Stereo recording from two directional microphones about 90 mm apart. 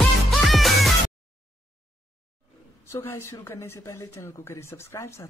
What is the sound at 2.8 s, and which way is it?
Speech, 30° left (ahead or behind).